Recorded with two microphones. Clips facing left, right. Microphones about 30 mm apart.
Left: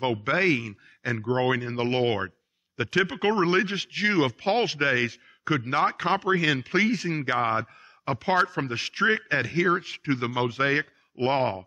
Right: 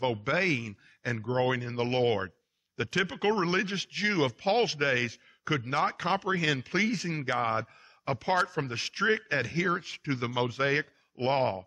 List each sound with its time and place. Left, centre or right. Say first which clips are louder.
0.0 s a man's voice: left 4 dB; centre